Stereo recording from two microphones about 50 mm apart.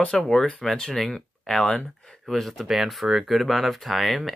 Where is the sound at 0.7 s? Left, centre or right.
Centre.